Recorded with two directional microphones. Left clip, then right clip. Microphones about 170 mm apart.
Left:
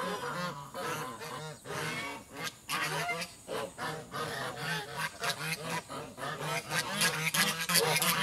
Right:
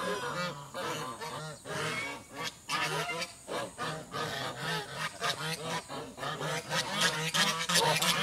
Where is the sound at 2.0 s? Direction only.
5° left (ahead or behind).